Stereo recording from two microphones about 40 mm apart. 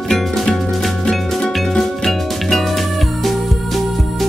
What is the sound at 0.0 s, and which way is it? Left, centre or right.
Music, centre.